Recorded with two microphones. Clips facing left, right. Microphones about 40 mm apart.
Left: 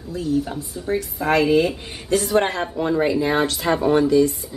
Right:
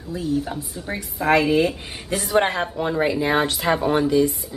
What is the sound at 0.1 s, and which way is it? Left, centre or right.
Speech, centre.